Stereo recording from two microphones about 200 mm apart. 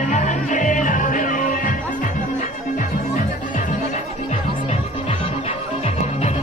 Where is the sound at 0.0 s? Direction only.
35° left (ahead or behind).